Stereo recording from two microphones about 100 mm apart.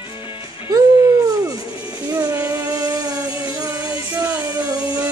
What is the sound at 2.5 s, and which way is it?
Music, 35° right (ahead or behind).